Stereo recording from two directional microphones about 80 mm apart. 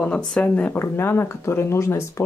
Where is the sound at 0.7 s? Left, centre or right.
Left.